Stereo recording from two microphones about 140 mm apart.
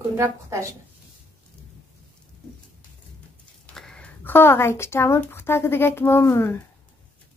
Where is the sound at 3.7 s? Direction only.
5° left (ahead or behind).